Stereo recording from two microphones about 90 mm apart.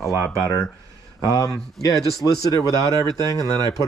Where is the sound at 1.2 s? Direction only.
40° left (ahead or behind).